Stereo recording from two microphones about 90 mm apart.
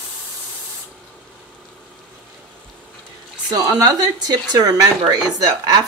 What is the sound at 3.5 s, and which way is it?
Speech, 45° right (ahead or behind).